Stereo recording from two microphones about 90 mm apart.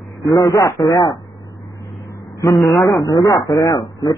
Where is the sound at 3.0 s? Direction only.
45° left (ahead or behind).